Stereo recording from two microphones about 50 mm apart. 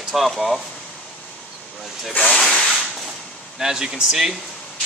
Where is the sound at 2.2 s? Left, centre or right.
Centre.